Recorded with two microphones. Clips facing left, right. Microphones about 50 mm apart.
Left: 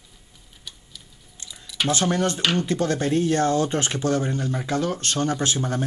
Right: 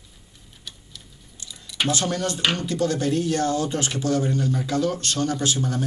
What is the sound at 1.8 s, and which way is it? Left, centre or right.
Speech, left.